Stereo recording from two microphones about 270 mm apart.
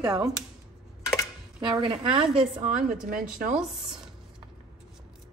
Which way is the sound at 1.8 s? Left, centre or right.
Centre.